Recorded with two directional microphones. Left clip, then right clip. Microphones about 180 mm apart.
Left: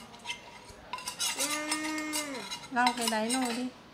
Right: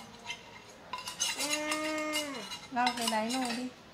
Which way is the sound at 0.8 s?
15° left (ahead or behind).